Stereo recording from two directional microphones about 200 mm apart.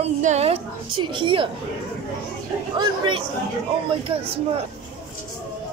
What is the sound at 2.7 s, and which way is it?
Speech, 25° right (ahead or behind).